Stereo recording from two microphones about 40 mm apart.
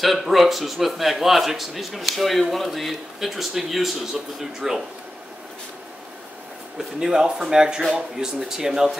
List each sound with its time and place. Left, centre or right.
0.0 s a man's voice: centre
6.8 s speech: centre